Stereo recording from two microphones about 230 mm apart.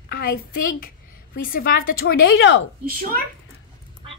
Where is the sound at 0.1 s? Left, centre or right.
Left.